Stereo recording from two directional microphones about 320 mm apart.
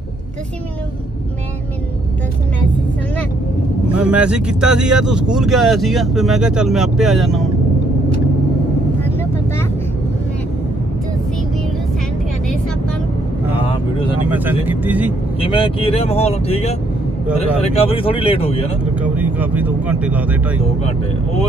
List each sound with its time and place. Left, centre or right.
3.9 s speech: centre
9.0 s vehicle: centre
13.7 s vehicle: centre
14.3 s speech: centre
15.4 s speech: centre
18.9 s speech: centre